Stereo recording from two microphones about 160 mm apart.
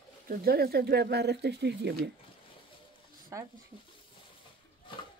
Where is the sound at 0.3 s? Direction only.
70° right (ahead or behind); by 2.0 s 90° right.